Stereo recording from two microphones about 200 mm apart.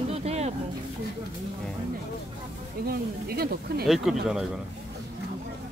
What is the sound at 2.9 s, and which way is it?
Speech, 50° right (ahead or behind).